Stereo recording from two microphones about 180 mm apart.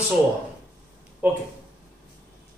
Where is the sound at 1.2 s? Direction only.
10° right (ahead or behind).